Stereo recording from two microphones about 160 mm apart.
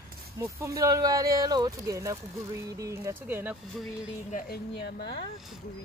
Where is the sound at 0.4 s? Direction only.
20° right (ahead or behind).